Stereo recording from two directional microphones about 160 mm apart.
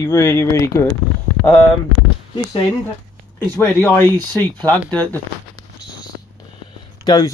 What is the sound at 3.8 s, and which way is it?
Speech, 10° left (ahead or behind).